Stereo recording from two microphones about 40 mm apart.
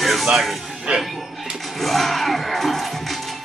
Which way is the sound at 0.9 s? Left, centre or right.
Right.